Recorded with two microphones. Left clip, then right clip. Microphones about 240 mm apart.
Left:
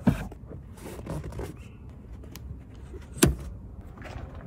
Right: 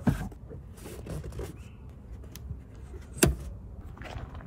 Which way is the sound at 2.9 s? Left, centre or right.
Centre.